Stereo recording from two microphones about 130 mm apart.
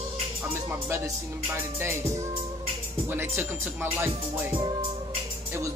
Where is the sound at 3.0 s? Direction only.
15° right (ahead or behind).